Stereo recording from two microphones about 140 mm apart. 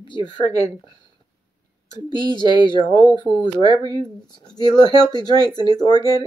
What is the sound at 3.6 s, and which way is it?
Speech, 35° right (ahead or behind).